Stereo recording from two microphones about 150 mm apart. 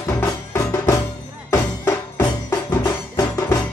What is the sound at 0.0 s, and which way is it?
Music, 15° left (ahead or behind).